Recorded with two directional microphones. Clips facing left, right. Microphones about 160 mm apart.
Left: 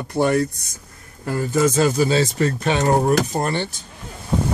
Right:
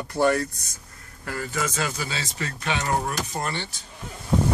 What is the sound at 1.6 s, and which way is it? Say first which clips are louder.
Speech: left 12 dB; 40° left (ahead or behind).